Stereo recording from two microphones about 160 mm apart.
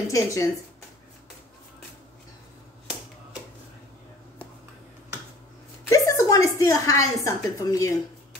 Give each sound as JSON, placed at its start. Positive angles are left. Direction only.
{"t": 0.1, "sound": "speech", "side_deg": 20}
{"t": 5.9, "sound": "a woman's voice", "side_deg": 20}